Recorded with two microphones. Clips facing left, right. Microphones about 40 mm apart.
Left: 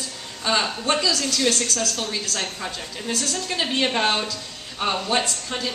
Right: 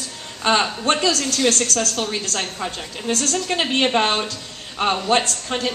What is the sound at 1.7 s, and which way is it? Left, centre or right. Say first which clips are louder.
A woman's voice: right 3 dB; right.